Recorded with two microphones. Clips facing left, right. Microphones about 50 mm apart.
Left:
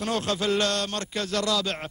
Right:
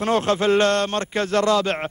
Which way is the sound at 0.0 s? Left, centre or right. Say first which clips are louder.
Right 7 dB; right.